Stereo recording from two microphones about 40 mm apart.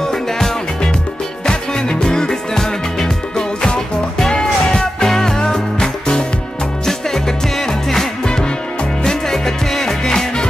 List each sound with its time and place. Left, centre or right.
0.0 s music: centre
1.5 s music: centre